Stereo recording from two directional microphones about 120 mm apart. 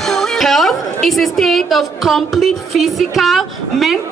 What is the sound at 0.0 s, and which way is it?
A woman's voice, 5° left (ahead or behind).